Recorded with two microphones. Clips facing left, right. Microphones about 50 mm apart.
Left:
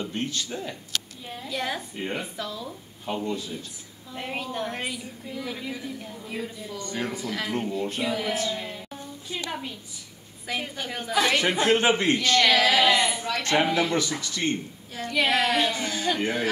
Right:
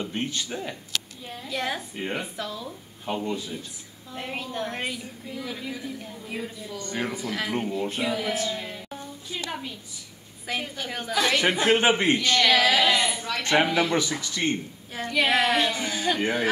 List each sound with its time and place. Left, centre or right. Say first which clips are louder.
0.0 s a man's voice: even; centre
1.5 s speech: right 1 dB; centre
3.3 s a man's voice: even; centre
4.1 s a woman's voice: left 1 dB; centre
4.7 s speech: right 1 dB; centre
5.4 s a woman's voice: even; centre
10.6 s a woman's voice: even; centre
11.1 s a woman's voice: left 1 dB; left
11.4 s a man's voice: right 1 dB; centre
12.4 s a woman's voice: right 1 dB; centre
12.8 s a woman's voice: left 1 dB; centre
13.1 s a man's voice: left 1 dB; centre
13.4 s a man's voice: right 1 dB; right
15.0 s speech: right 1 dB; centre